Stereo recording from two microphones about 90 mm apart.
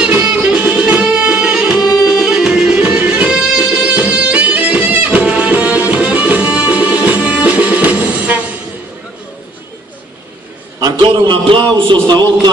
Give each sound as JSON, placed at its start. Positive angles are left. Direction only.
{"t": 0.0, "sound": "music", "side_deg": -15}
{"t": 11.0, "sound": "a man's voice", "side_deg": -65}